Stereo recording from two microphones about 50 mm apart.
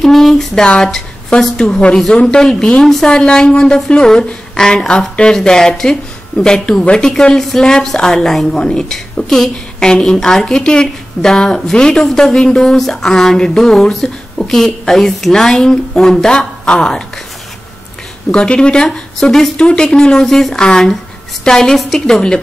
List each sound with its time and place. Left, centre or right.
0.0 s a sound: centre
0.8 s a woman's voice: centre
18.3 s a woman's voice: centre